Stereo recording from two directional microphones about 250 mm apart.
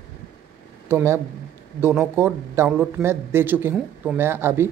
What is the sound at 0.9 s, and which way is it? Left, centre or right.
Speech, centre.